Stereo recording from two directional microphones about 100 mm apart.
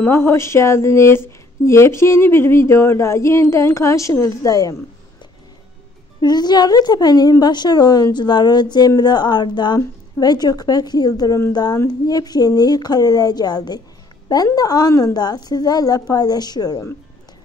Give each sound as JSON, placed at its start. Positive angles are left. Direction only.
{"t": 0.0, "sound": "speech", "side_deg": 25}
{"t": 6.2, "sound": "a woman's voice", "side_deg": 45}